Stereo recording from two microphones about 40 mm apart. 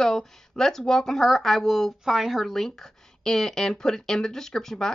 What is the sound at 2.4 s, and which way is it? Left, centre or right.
Speech, centre.